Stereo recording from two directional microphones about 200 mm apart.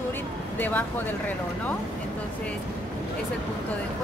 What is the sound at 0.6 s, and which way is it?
Speech, 10° left (ahead or behind).